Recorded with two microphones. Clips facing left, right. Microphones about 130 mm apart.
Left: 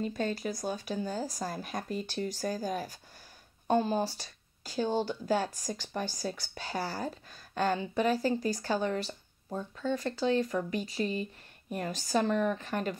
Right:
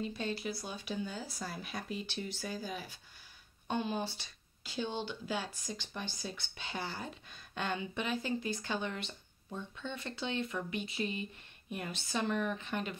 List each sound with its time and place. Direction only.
0.0 s speech: 45° left (ahead or behind)